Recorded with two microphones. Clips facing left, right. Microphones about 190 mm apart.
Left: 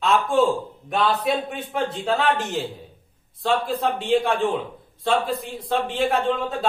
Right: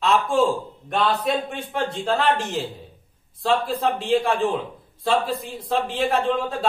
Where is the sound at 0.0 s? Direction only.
Centre (ahead or behind).